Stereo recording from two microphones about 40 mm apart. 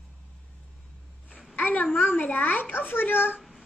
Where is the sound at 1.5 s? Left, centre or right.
Left.